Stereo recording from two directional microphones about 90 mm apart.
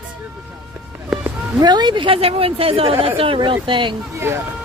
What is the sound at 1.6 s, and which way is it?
A woman's voice, 55° right (ahead or behind).